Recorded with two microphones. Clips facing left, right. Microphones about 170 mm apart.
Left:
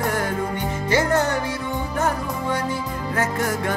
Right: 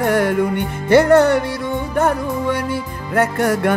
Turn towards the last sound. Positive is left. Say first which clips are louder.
# right 7 dB
turn(degrees=-65)  # may be behind; listen again after turning